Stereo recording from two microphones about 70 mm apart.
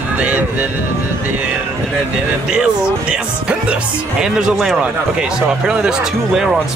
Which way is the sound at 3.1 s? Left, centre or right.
Centre.